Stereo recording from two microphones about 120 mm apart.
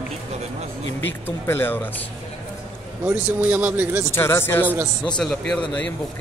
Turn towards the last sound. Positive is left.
turn(degrees=10)  # may be behind; listen again after turning